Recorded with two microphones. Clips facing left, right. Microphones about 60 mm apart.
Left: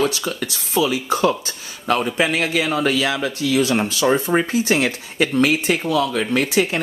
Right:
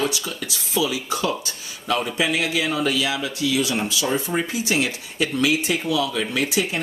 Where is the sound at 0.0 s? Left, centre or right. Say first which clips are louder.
Left 4 dB; left.